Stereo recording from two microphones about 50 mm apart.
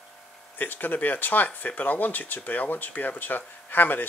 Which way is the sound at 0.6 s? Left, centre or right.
Left.